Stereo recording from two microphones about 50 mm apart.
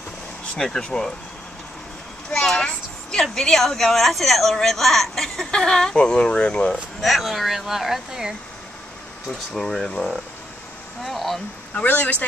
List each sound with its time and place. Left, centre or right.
0.6 s a woman's voice: centre
2.3 s a woman's voice: centre
7.0 s speech: centre
9.3 s a woman's voice: centre
11.7 s speech: left